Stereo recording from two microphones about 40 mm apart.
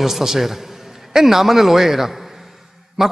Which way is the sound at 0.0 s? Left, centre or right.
Centre.